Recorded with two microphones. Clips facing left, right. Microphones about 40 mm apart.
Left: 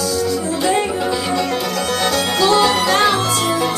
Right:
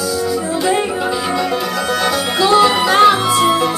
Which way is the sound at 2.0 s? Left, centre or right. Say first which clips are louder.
Right 1 dB; centre.